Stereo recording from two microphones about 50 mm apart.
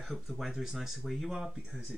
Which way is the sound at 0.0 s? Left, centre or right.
Centre.